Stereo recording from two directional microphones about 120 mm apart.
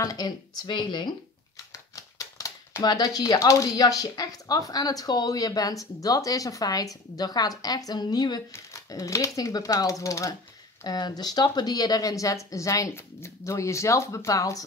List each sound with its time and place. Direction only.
0.0 s speech: 30° left (ahead or behind)
2.0 s typewriter: 25° left (ahead or behind)
2.8 s speech: 35° left (ahead or behind)